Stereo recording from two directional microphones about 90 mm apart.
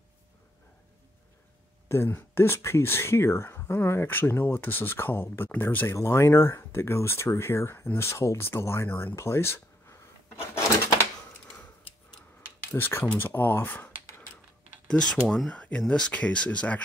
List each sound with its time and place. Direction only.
1.9 s speech: 25° left (ahead or behind)
5.9 s speech: 30° left (ahead or behind)
12.7 s speech: 25° left (ahead or behind)
14.9 s speech: 10° left (ahead or behind)